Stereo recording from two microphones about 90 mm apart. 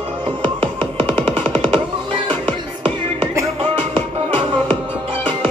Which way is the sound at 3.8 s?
90° right.